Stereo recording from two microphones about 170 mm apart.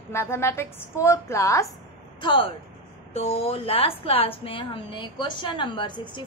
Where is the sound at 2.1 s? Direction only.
30° left (ahead or behind).